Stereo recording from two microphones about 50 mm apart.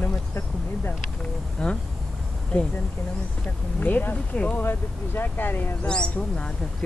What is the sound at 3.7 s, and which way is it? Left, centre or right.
Speech, left.